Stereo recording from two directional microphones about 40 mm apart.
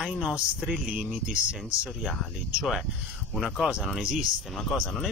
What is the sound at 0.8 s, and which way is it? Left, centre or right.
Speech, right.